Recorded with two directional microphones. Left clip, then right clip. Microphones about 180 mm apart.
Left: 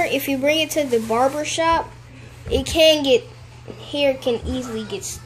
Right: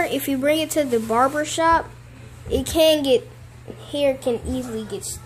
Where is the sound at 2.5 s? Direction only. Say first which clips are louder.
Left 2 dB; 10° right (ahead or behind).